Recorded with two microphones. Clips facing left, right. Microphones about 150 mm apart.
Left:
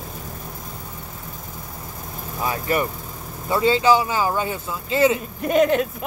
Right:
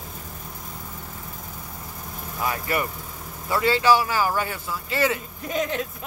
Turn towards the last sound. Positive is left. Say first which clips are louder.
# left 9 dB
turn(degrees=65)  # may be behind; listen again after turning